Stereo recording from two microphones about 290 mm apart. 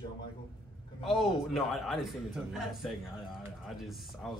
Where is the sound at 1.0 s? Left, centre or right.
Centre.